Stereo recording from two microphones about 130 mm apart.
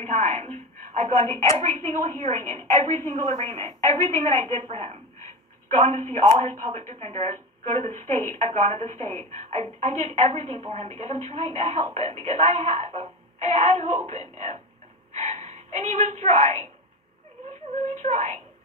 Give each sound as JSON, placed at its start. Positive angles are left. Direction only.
{"t": 0.0, "sound": "a sound", "side_deg": -55}
{"t": 2.2, "sound": "a woman's voice", "side_deg": -55}
{"t": 17.8, "sound": "a woman's voice", "side_deg": -60}